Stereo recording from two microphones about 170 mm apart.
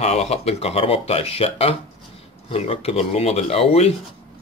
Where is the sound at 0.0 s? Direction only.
40° left (ahead or behind).